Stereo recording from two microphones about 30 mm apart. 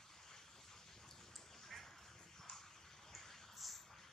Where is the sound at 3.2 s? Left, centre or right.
Centre.